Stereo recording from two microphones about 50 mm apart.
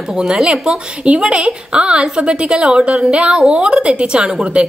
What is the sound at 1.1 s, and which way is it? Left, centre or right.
A woman's voice, right.